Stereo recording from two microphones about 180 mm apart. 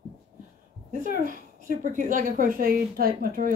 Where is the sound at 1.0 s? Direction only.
50° right (ahead or behind).